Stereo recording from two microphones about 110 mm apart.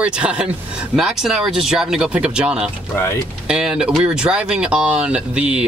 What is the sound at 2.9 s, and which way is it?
Speech, 25° left (ahead or behind).